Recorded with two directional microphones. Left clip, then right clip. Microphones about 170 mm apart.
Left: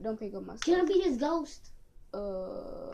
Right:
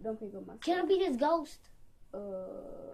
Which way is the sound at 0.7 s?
55° right (ahead or behind).